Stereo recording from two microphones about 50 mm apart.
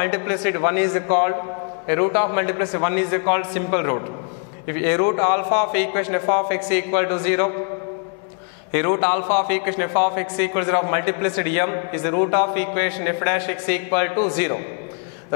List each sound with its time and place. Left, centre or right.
0.0 s a man's voice: left
8.7 s a man's voice: left